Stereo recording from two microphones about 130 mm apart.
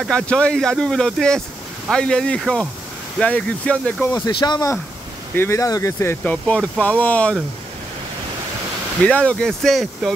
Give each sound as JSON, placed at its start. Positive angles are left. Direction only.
{"t": 0.0, "sound": "speech", "side_deg": 5}
{"t": 4.3, "sound": "speech", "side_deg": 35}
{"t": 5.3, "sound": "speech", "side_deg": 20}
{"t": 6.3, "sound": "speech", "side_deg": 10}
{"t": 9.0, "sound": "speech", "side_deg": 10}